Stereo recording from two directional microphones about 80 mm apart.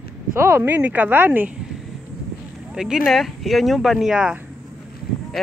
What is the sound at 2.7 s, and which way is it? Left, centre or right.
Speech, centre.